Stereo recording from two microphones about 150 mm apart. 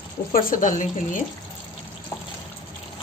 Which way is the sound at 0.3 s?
65° left (ahead or behind).